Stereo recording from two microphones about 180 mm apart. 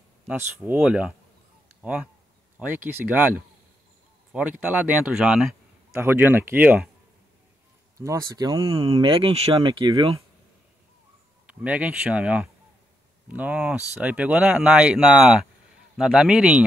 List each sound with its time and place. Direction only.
0.3 s speech: 10° right (ahead or behind)
8.0 s speech: 15° right (ahead or behind)
11.4 s speech: 5° right (ahead or behind)